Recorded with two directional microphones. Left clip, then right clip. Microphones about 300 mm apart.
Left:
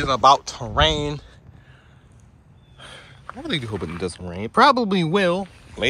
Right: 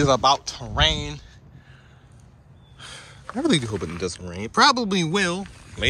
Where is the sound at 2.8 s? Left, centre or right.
Centre.